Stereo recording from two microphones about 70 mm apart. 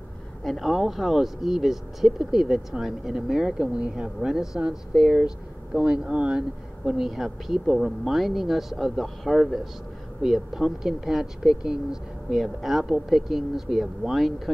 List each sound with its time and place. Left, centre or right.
0.4 s speech: centre
5.8 s speech: centre
6.9 s speech: centre